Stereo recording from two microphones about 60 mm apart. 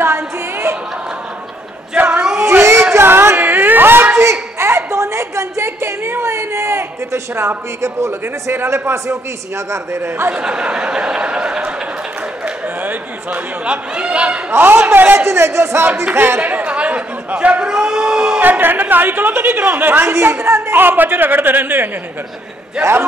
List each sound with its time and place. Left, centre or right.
0.0 s a sound: right
2.0 s a sound: right
2.9 s a sound: right
4.2 s a sound: right
8.6 s speech: right
10.3 s speech: centre
12.8 s a man's voice: right
14.5 s speech: right
15.1 s speech: right
16.3 s chatter: right
18.4 s speech: right
20.7 s speech: right
22.8 s speech: centre